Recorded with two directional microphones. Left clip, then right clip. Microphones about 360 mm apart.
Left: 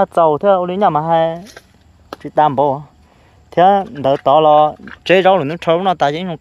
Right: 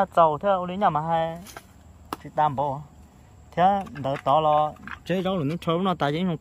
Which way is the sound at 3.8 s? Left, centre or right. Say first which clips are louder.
Left 14 dB; left.